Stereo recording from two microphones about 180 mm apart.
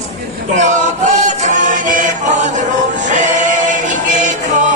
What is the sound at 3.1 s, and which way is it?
Music, 45° right (ahead or behind).